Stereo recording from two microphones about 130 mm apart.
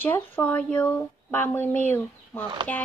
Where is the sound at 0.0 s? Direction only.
15° left (ahead or behind).